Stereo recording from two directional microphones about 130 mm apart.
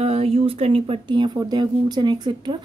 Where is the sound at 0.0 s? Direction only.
50° right (ahead or behind).